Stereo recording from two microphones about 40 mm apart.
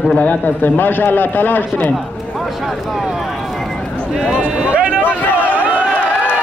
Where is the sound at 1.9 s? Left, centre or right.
Centre.